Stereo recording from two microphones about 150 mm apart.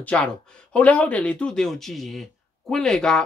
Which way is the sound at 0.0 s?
5° left (ahead or behind).